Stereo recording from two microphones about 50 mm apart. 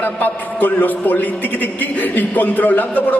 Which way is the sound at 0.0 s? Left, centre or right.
Left.